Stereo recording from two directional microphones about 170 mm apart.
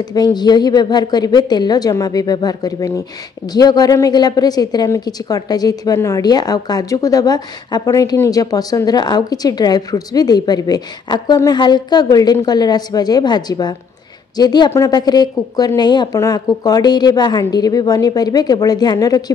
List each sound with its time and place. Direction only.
0.0 s a woman's voice: 25° left (ahead or behind)